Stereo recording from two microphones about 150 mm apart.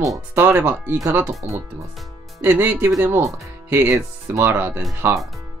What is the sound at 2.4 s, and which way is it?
Speech, 10° right (ahead or behind).